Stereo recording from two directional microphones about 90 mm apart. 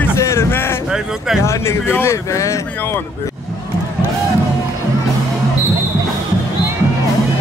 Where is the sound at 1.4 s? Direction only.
30° left (ahead or behind).